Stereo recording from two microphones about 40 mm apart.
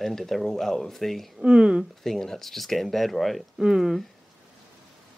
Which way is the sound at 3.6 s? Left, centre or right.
Centre.